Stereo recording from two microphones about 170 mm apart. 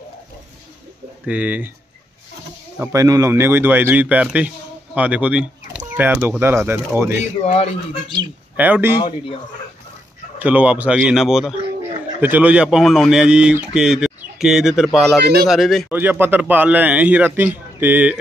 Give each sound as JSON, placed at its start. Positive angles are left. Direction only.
{"t": 1.2, "sound": "a man's voice", "side_deg": -10}
{"t": 2.8, "sound": "a man's voice", "side_deg": -20}
{"t": 7.4, "sound": "speech", "side_deg": 40}
{"t": 8.5, "sound": "a man's voice", "side_deg": -10}
{"t": 9.0, "sound": "speech", "side_deg": 30}
{"t": 10.4, "sound": "speech", "side_deg": -10}
{"t": 16.0, "sound": "a man's voice", "side_deg": -10}